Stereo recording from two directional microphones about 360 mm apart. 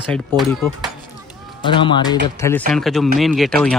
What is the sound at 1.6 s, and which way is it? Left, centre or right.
Speech, centre.